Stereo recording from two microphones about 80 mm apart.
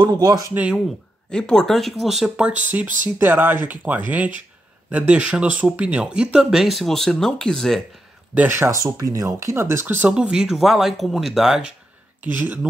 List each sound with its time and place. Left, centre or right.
0.1 s speech: right
1.3 s speech: centre
2.7 s speech: right; by 7.8 s centre
8.4 s speech: right
10.0 s speech: centre
12.3 s speech: right